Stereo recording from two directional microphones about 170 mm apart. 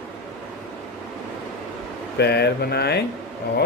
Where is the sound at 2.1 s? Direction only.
75° left (ahead or behind).